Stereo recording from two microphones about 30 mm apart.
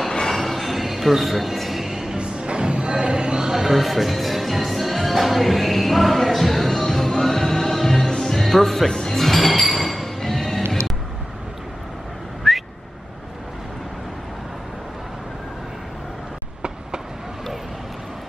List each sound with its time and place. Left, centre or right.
0.3 s a sound: centre
1.6 s music: centre
2.0 s music: right
3.5 s music: centre
12.4 s whistling: centre